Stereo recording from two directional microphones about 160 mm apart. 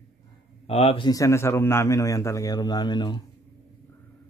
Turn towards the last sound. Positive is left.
turn(degrees=25)  # may be behind; listen again after turning